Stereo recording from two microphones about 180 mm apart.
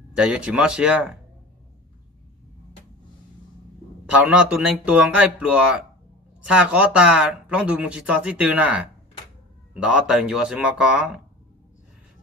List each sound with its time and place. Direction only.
0.1 s speech: 5° right (ahead or behind)
4.0 s speech: 5° right (ahead or behind)